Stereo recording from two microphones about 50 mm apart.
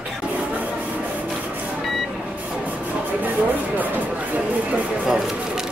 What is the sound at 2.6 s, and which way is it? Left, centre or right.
Speech, right.